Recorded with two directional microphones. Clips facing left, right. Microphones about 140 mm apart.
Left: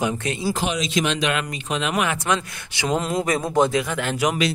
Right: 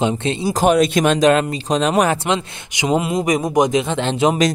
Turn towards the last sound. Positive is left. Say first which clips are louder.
# right 6 dB
turn(degrees=-25)  # may be behind; listen again after turning